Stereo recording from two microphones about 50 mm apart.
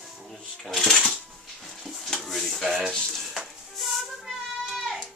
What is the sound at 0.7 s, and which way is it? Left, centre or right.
Cash register, centre.